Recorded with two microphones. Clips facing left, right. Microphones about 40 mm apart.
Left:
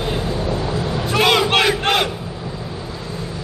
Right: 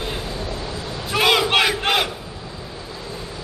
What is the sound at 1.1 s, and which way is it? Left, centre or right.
Battle cry, centre.